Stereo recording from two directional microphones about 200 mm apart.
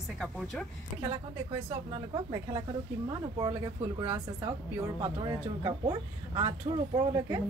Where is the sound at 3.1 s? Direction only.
20° right (ahead or behind).